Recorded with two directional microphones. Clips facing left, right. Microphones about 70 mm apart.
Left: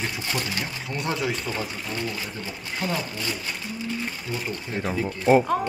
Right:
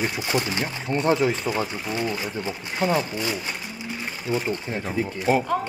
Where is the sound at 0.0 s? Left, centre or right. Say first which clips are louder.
Right 4 dB; centre.